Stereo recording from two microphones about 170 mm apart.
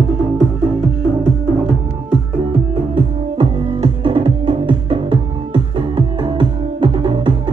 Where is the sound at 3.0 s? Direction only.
30° right (ahead or behind).